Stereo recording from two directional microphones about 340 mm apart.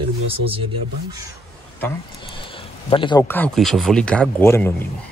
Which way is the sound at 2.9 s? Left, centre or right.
Centre.